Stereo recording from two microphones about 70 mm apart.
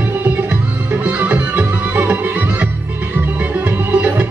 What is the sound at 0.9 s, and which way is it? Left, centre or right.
Music, right.